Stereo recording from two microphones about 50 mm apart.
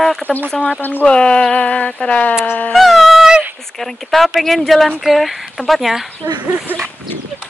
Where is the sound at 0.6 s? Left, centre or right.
Left.